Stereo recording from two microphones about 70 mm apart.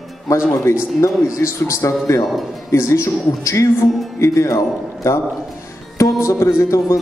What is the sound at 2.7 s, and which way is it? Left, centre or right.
Speech, left.